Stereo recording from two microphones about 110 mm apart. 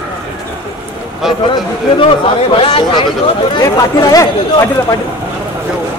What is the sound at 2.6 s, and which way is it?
Speech, 60° left (ahead or behind).